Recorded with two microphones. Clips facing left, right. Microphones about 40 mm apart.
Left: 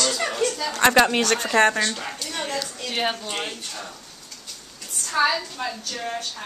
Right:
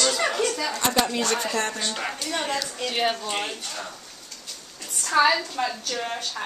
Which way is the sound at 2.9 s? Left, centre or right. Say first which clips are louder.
Right 1 dB; centre.